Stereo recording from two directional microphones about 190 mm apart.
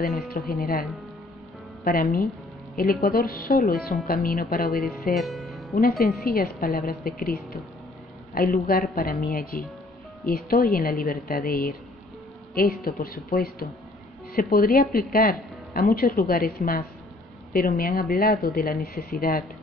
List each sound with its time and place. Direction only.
0.0 s speech: centre (ahead or behind)
0.3 s a woman's voice: 55° left (ahead or behind)
1.9 s a woman's voice: 50° left (ahead or behind)
5.1 s music: centre (ahead or behind)
5.8 s a woman's voice: 50° left (ahead or behind)